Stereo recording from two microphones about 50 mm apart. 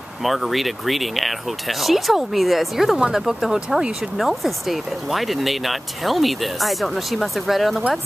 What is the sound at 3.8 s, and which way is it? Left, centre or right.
Speech, centre.